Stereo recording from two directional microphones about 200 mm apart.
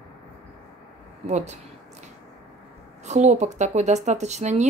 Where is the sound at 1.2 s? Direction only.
35° right (ahead or behind).